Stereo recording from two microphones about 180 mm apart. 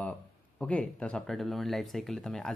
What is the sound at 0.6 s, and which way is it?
Speech, 5° left (ahead or behind).